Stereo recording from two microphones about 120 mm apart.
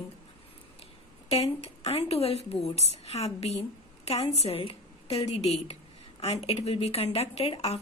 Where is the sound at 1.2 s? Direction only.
60° left (ahead or behind).